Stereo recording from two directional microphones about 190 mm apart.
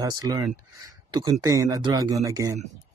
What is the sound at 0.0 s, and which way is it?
Speech, 20° right (ahead or behind).